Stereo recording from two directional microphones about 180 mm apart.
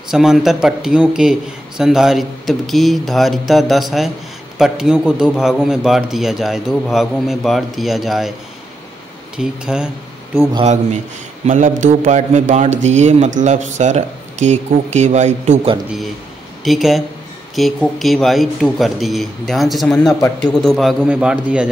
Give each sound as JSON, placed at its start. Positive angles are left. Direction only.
{"t": 0.1, "sound": "a man's voice", "side_deg": 0}
{"t": 9.4, "sound": "a man's voice", "side_deg": -5}
{"t": 10.5, "sound": "speech", "side_deg": -35}
{"t": 16.6, "sound": "a man's voice", "side_deg": 0}